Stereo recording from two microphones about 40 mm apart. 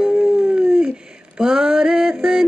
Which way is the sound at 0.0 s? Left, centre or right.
Centre.